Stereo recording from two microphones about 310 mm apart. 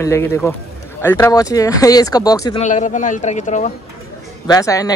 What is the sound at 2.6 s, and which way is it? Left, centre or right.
Speech, left.